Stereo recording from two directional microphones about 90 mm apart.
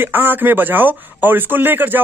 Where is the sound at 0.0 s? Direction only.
20° right (ahead or behind).